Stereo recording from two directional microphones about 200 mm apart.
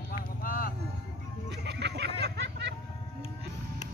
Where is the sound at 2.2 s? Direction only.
60° right (ahead or behind).